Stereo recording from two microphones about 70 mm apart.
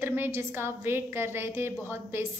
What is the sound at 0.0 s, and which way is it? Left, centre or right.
A woman's voice, right.